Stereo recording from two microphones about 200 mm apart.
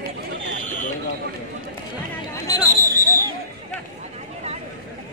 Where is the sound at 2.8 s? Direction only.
40° left (ahead or behind).